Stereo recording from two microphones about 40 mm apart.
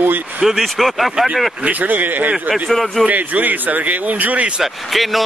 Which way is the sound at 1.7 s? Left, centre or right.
Right.